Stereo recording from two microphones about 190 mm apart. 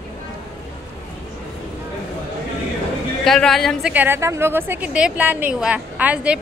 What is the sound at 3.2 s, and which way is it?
Speech, centre (ahead or behind).